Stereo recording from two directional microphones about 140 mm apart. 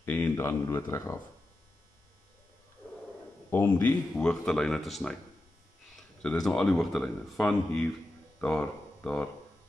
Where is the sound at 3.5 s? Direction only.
15° left (ahead or behind).